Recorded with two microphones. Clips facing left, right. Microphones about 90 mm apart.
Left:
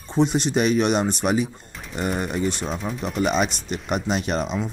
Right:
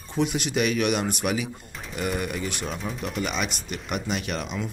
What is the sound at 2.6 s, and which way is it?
Speech, centre (ahead or behind).